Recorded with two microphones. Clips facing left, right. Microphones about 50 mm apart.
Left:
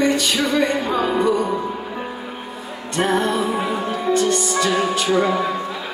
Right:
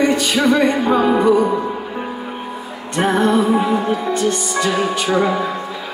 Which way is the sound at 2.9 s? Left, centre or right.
Centre.